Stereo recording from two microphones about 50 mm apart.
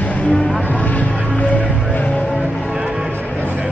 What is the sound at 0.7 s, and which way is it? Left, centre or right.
Vehicle, left.